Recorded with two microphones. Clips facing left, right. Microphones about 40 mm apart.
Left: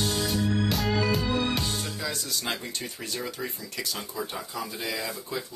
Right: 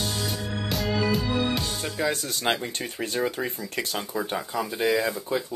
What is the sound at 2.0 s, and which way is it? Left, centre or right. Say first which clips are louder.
Speech: right 6 dB; right.